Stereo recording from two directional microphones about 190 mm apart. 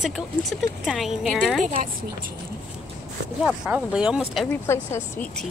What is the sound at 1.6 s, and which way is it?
Speech, 40° right (ahead or behind).